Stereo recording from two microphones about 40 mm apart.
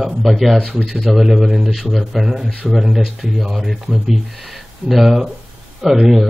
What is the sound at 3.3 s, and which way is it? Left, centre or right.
A man's voice, centre.